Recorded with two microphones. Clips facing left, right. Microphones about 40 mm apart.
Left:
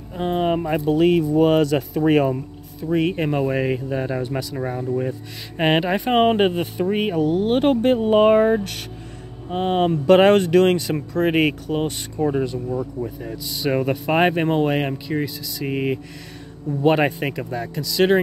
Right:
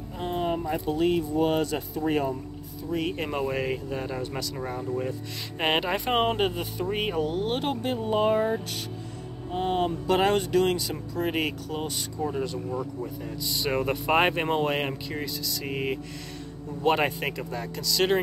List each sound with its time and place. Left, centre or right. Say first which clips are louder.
0.3 s a sound: left 7 dB; left
0.6 s speech: left 8 dB; left
2.9 s speech: left 8 dB; left
3.3 s speech: left 7 dB; centre
6.2 s speech: left 8 dB; left
6.9 s speech: left 7 dB; centre
7.5 s speech: left 11 dB; left
13.0 s speech: left 5 dB; centre
13.4 s speech: left 5 dB; centre